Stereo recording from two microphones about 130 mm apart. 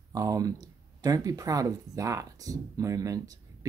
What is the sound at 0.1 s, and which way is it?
Speech, 30° right (ahead or behind).